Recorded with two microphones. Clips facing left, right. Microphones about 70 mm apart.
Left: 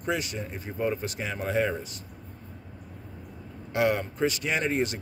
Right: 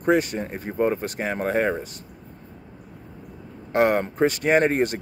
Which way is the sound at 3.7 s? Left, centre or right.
Right.